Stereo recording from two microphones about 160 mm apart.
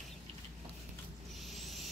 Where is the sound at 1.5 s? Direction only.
Centre (ahead or behind).